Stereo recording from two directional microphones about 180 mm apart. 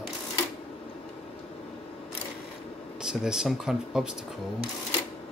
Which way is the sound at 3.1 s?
5° right (ahead or behind).